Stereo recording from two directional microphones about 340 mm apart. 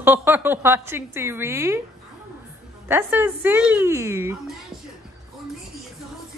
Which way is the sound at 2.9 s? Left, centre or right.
Centre.